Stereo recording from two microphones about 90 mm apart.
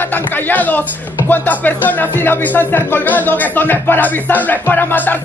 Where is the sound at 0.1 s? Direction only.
20° left (ahead or behind).